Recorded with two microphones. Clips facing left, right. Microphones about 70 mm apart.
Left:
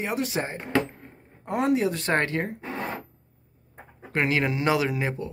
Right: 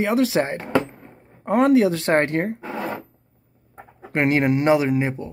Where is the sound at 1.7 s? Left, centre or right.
Right.